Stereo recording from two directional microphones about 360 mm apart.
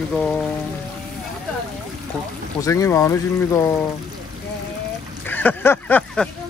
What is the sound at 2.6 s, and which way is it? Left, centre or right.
Speech, centre.